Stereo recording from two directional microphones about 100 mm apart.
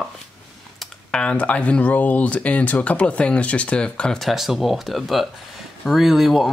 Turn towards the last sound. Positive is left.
turn(degrees=0)  # may be behind; listen again after turning